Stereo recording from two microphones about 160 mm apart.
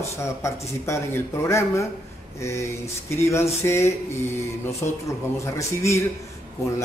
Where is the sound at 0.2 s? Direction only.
15° left (ahead or behind).